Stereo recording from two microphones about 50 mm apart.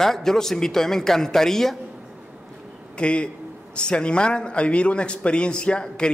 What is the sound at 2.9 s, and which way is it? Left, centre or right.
A man's voice, left.